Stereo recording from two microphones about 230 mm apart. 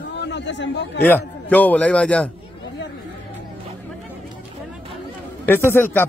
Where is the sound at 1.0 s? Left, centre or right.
Centre.